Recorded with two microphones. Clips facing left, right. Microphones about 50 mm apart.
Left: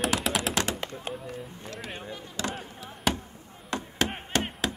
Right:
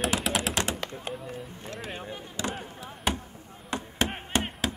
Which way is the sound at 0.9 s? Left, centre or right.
Centre.